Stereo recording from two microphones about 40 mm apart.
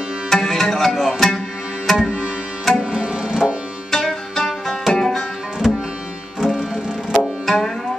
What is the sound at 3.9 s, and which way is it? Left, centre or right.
Music, centre.